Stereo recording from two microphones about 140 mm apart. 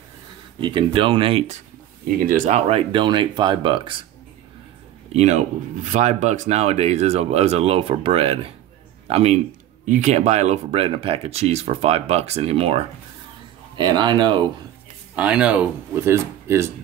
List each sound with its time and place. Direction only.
0.6 s speech: 35° right (ahead or behind)
2.2 s speech: 65° right (ahead or behind)
2.7 s speech: 35° right (ahead or behind)
5.1 s speech: 55° right (ahead or behind)
9.8 s speech: 60° right (ahead or behind); by 12.8 s 45° right (ahead or behind)
13.7 s speech: 30° right (ahead or behind)
15.1 s speech: 10° right (ahead or behind)
16.0 s speech: 20° right (ahead or behind)